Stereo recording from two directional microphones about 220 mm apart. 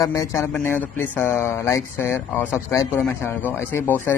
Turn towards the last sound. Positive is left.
turn(degrees=10)  # may be behind; listen again after turning